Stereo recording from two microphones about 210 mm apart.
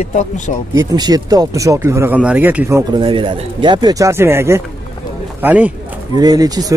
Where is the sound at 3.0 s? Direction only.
25° right (ahead or behind); by 5.7 s 5° right (ahead or behind).